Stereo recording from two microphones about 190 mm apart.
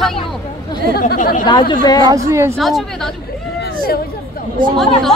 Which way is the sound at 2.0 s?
15° right (ahead or behind).